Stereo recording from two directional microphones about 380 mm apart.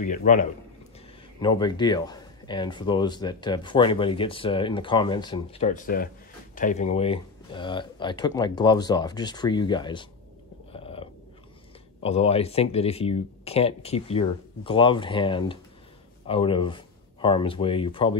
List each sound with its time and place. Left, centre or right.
0.0 s a man's voice: centre
10.7 s dog: centre
12.0 s speech: centre